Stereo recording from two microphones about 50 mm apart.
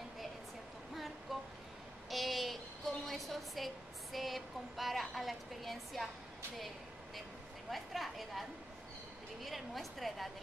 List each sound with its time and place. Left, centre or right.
1.3 s vehicle: centre
2.0 s a sound: centre
7.7 s a woman's voice: centre